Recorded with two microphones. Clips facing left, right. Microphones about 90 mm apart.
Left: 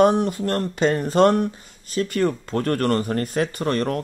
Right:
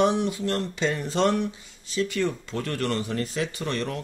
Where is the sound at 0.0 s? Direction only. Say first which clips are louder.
Left 5 dB; 45° left (ahead or behind).